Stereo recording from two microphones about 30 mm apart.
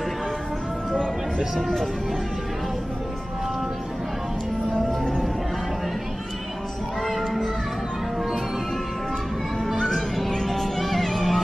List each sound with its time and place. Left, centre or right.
4.7 s music: centre
9.8 s music: centre